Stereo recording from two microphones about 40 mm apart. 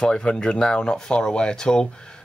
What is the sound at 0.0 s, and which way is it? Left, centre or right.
Speech, left.